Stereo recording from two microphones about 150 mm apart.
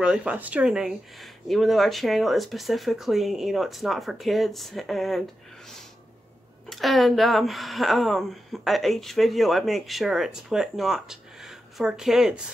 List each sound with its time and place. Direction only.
0.0 s speech: 5° right (ahead or behind)